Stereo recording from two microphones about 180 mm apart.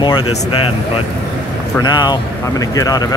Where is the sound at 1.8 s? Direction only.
25° left (ahead or behind).